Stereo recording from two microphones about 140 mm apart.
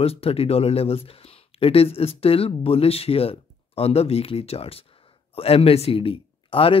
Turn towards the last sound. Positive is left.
turn(degrees=40)  # may be behind; listen again after turning